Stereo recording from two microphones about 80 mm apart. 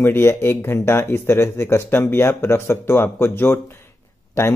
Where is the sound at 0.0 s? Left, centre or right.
Left.